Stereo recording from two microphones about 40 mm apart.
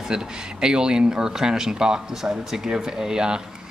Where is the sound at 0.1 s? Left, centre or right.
Centre.